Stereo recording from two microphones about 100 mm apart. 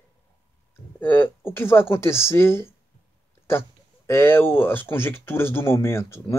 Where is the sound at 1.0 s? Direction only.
20° left (ahead or behind).